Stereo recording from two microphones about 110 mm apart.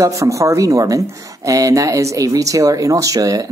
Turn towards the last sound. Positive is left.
turn(degrees=-35)  # may be behind; listen again after turning